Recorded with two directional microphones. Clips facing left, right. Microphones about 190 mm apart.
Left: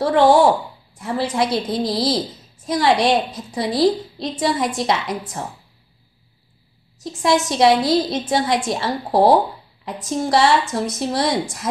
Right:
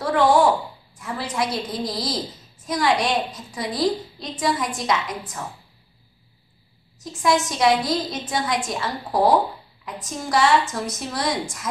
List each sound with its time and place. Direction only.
0.0 s a sound: 30° left (ahead or behind)
0.9 s a woman's voice: 30° left (ahead or behind)
7.2 s a woman's voice: 30° left (ahead or behind)